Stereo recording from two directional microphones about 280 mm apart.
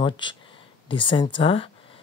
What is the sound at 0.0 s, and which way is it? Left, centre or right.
Speech, centre.